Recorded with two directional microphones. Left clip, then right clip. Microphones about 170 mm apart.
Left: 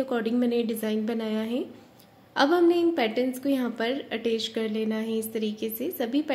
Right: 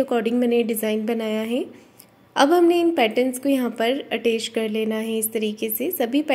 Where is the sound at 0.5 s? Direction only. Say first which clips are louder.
Right 6 dB; 45° left (ahead or behind).